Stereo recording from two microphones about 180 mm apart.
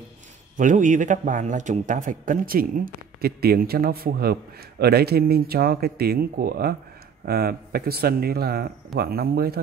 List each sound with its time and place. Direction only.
0.6 s speech: 45° right (ahead or behind)